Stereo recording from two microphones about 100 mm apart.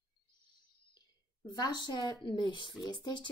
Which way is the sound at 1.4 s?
50° left (ahead or behind).